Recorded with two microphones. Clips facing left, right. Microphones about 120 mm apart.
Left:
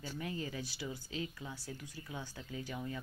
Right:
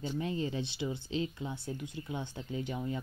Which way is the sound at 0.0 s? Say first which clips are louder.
Right 7 dB; 25° right (ahead or behind).